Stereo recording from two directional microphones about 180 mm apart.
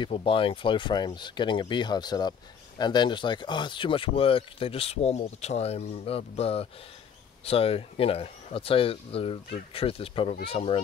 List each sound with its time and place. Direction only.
0.0 s speech: 30° left (ahead or behind)